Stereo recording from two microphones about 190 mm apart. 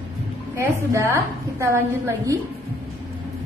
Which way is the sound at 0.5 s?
15° right (ahead or behind).